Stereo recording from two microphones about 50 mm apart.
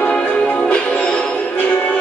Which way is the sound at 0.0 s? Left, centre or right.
Left.